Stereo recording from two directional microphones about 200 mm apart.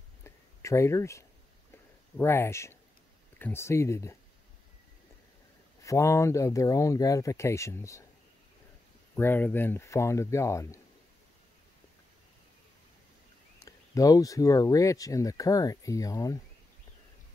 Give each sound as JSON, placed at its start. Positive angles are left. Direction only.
{"t": 0.2, "sound": "a sound", "side_deg": 15}
{"t": 2.1, "sound": "speech", "side_deg": 10}
{"t": 5.9, "sound": "speech", "side_deg": 15}
{"t": 9.1, "sound": "speech", "side_deg": 10}
{"t": 13.7, "sound": "speech", "side_deg": 15}